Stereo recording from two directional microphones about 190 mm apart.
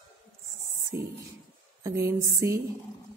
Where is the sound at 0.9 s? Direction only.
15° right (ahead or behind).